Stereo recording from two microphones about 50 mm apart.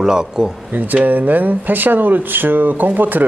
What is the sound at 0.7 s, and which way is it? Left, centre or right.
Speech, right.